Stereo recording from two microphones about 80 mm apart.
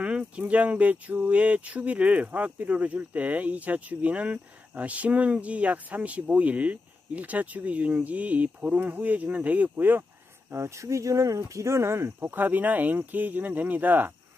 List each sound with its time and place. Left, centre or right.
0.0 s speech: centre
10.5 s speech: right
12.2 s speech: right